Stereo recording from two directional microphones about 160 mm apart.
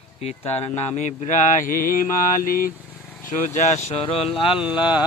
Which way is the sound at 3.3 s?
45° left (ahead or behind).